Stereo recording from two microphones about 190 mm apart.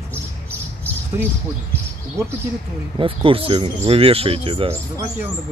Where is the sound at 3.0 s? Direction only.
30° right (ahead or behind).